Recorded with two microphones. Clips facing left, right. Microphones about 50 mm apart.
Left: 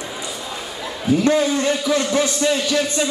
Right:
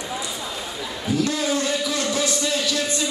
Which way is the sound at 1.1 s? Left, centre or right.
Left.